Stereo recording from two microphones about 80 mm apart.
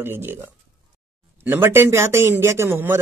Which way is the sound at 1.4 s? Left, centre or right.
Right.